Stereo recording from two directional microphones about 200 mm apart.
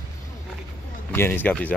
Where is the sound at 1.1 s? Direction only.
10° left (ahead or behind).